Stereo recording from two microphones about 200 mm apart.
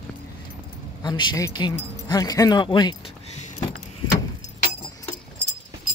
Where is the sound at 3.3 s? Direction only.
35° left (ahead or behind).